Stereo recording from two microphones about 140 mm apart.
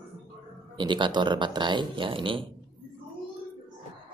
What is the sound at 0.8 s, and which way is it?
Speech, 35° right (ahead or behind).